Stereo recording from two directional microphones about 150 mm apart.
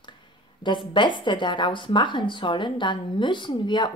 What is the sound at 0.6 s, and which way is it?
A woman's voice, 35° left (ahead or behind).